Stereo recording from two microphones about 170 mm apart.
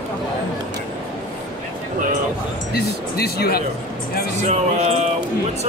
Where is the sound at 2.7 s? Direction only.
70° left (ahead or behind).